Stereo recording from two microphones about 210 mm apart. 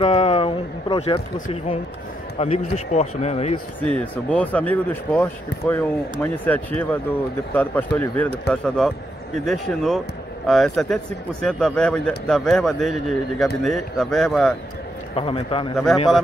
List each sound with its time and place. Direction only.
0.0 s a man's voice: 30° left (ahead or behind)
3.8 s speech: 5° left (ahead or behind)
15.1 s speech: 25° left (ahead or behind)
15.7 s speech: centre (ahead or behind)